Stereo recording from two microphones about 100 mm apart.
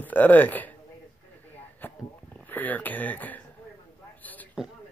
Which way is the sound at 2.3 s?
15° left (ahead or behind).